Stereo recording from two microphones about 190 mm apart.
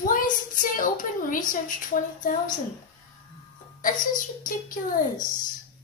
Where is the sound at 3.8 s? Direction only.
45° left (ahead or behind).